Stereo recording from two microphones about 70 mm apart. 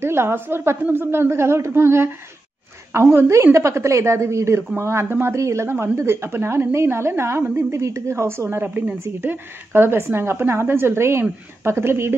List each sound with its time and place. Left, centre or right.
0.0 s speech: right
8.6 s speech: right